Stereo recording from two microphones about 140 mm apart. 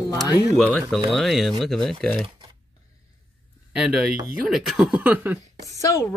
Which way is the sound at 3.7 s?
5° right (ahead or behind).